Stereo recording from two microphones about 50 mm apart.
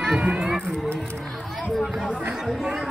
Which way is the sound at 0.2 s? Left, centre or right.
Centre.